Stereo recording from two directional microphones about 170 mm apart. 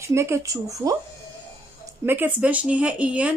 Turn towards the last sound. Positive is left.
turn(degrees=-10)  # may be behind; listen again after turning